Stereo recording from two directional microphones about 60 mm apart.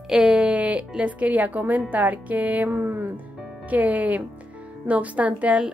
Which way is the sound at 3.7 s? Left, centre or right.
Right.